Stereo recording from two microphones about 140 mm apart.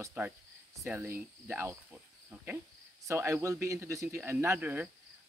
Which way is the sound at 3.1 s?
20° right (ahead or behind).